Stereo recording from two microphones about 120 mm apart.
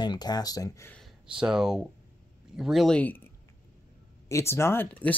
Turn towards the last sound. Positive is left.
turn(degrees=15)  # may be behind; listen again after turning